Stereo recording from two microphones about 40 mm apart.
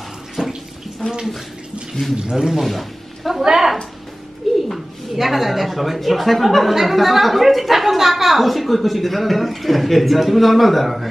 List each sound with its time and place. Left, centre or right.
0.4 s water tap: centre
2.1 s speech: centre
2.6 s a woman's voice: centre